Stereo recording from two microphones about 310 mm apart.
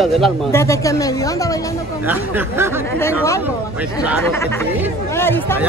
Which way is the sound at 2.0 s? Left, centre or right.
Centre.